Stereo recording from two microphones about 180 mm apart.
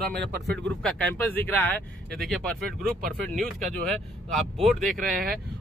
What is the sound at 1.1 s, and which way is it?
Speech, 10° left (ahead or behind).